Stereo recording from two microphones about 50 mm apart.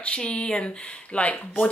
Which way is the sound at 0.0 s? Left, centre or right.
Left.